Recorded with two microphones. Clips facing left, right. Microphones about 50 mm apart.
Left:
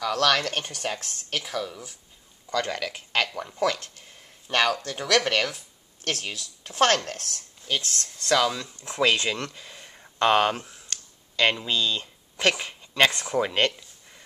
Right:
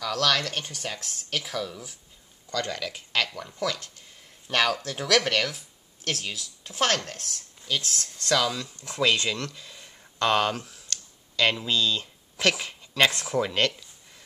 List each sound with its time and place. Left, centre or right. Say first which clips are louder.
0.0 s speech: left 3 dB; centre
0.5 s speech: left 3 dB; left
1.0 s speech: even; centre
2.5 s speech: left 3 dB; centre
3.5 s speech: left 5 dB; left
4.5 s speech: left 1 dB; centre
6.8 s speech: left 4 dB; left
7.1 s a woman's voice: left 3 dB; left
7.8 s speech: even; centre
9.0 s a sound: left 1 dB; centre
11.6 s speech: even; centre
13.4 s a sound: left 1 dB; centre